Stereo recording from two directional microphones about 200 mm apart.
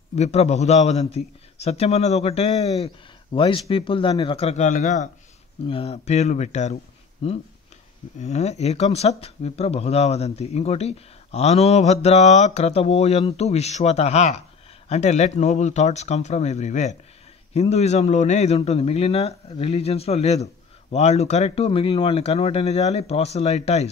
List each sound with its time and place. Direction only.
0.1 s speech: 35° left (ahead or behind)